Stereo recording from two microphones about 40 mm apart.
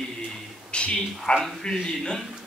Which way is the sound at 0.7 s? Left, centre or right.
Left.